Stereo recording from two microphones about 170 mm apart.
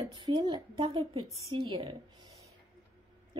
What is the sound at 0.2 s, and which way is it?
A woman's voice, 30° right (ahead or behind).